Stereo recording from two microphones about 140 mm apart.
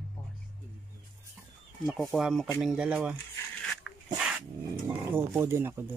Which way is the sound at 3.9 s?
5° left (ahead or behind).